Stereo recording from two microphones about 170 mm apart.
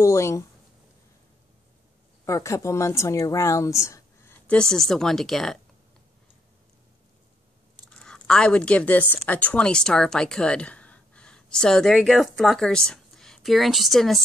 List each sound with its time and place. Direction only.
0.0 s speech: 15° left (ahead or behind)
2.2 s a woman's voice: 15° left (ahead or behind); by 5.6 s centre (ahead or behind)
7.9 s speech: 5° left (ahead or behind)